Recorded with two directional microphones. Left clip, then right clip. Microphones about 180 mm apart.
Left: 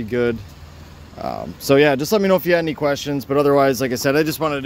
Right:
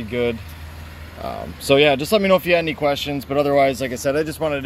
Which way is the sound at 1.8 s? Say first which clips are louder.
Even; 30° left (ahead or behind).